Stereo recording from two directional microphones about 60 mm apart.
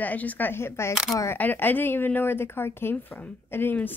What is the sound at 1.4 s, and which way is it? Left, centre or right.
Speech, left.